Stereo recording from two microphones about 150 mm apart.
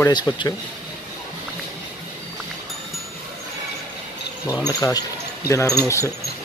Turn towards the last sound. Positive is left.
turn(degrees=20)  # may be behind; listen again after turning